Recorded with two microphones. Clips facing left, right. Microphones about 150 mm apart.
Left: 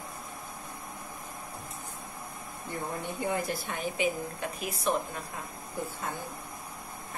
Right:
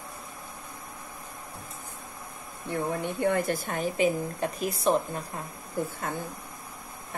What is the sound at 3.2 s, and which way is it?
A woman's voice, 60° right (ahead or behind).